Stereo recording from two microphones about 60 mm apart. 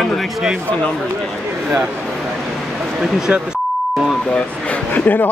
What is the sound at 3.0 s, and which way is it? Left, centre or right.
Beep, centre.